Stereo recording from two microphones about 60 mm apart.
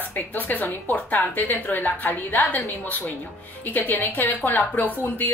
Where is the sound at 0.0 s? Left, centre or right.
Left.